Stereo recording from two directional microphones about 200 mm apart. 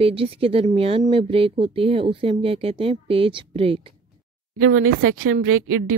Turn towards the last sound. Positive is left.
turn(degrees=-90)